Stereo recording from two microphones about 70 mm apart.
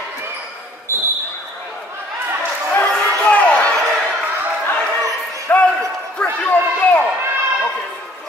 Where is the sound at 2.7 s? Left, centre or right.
Left.